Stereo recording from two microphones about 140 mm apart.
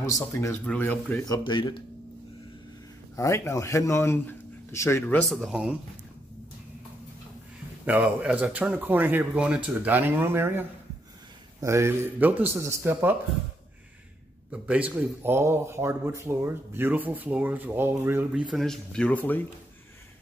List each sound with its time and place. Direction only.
0.0 s speech: 20° left (ahead or behind)
1.2 s speech: 30° left (ahead or behind)
3.2 s speech: 20° left (ahead or behind)
5.0 s speech: 5° left (ahead or behind)
7.8 s speech: 10° right (ahead or behind)
11.6 s speech: 20° right (ahead or behind)
14.5 s speech: 10° right (ahead or behind)
18.5 s speech: centre (ahead or behind)